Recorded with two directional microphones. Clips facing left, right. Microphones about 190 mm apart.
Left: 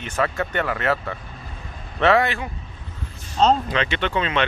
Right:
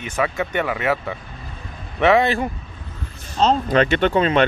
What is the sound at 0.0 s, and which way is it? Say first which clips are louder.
Speech: right 1 dB; 10° right (ahead or behind).